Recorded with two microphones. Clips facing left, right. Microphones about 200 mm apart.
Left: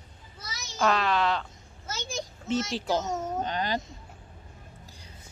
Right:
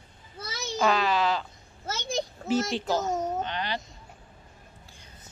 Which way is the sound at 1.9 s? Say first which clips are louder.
Right 5 dB; 60° right (ahead or behind).